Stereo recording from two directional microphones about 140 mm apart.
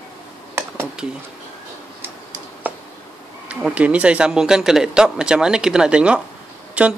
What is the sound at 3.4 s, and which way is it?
Speech, 10° right (ahead or behind).